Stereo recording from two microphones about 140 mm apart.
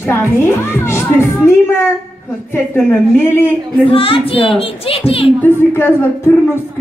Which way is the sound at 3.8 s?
40° left (ahead or behind).